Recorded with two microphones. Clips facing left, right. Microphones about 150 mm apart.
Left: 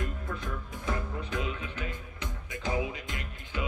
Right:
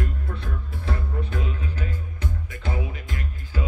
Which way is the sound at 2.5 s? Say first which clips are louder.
Left 3 dB; 20° left (ahead or behind).